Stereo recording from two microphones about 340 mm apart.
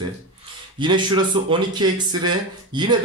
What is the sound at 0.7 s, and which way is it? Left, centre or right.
Speech, centre.